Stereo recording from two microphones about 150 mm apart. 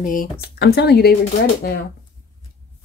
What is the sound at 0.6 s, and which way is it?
Speech, 90° left.